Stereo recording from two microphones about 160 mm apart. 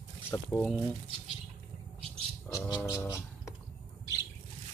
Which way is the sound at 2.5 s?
25° left (ahead or behind).